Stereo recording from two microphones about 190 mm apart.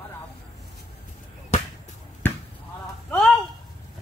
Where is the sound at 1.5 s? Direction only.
35° left (ahead or behind).